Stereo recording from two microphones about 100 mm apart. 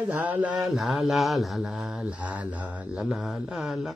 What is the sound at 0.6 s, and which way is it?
Mantra, centre (ahead or behind).